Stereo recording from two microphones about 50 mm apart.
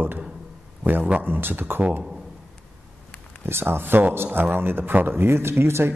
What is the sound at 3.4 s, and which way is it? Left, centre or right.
A man's voice, right.